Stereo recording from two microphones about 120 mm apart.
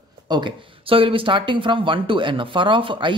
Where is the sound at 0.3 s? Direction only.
40° right (ahead or behind).